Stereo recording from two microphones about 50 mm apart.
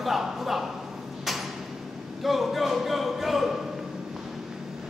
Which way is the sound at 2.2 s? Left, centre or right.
Centre.